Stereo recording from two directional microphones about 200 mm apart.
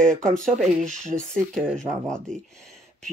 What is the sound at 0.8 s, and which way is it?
Speech, 40° right (ahead or behind).